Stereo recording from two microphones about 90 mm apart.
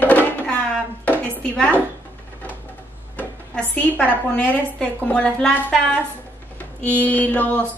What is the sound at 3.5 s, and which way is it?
A woman's voice, 10° left (ahead or behind).